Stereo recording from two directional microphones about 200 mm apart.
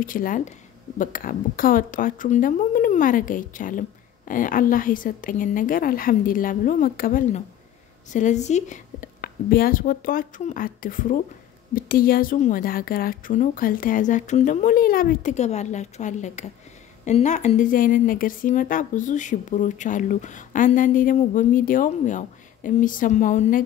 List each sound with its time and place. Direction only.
0.0 s a woman's voice: 45° left (ahead or behind)